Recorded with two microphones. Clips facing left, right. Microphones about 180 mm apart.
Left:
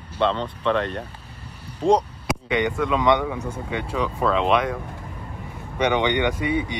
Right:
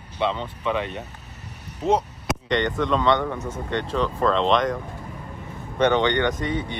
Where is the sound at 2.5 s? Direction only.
10° left (ahead or behind).